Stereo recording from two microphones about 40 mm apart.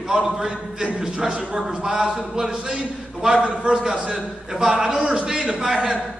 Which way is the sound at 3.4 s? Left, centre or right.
Right.